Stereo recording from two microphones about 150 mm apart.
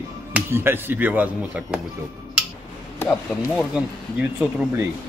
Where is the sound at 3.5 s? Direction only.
5° right (ahead or behind).